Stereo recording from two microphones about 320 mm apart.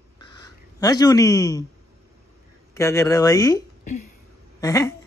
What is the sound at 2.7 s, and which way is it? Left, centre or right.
Speech, centre.